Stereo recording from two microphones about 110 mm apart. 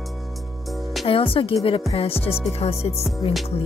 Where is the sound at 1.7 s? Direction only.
55° left (ahead or behind).